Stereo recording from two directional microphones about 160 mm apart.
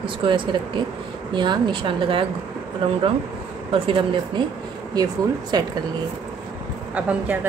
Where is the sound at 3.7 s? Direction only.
30° right (ahead or behind).